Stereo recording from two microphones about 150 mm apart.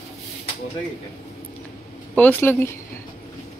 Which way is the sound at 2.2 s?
10° left (ahead or behind).